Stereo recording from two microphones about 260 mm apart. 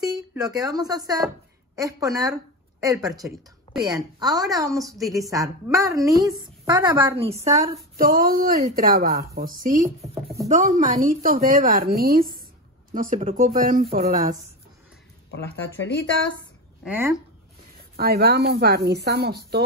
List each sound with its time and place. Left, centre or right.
0.3 s a woman's voice: centre
8.0 s a woman's voice: right
9.8 s a woman's voice: centre
10.5 s a woman's voice: right
15.3 s speech: left
16.8 s a woman's voice: centre
17.9 s a woman's voice: right